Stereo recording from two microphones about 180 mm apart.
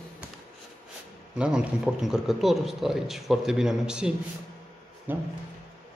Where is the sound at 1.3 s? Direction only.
5° right (ahead or behind).